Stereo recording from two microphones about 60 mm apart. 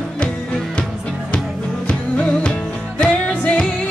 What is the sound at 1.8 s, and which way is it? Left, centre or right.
Music, left.